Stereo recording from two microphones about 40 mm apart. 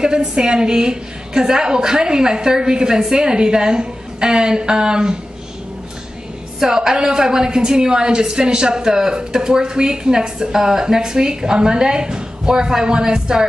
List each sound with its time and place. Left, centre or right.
0.0 s a woman's voice: centre
6.6 s a woman's voice: centre